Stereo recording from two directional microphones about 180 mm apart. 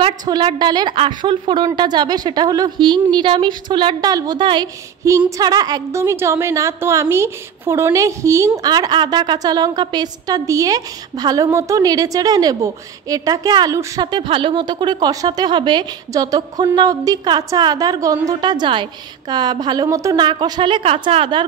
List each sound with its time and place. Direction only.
0.0 s a woman's voice: 25° right (ahead or behind)